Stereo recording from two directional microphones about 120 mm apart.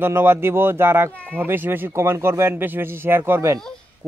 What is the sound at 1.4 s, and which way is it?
Speech, 15° right (ahead or behind).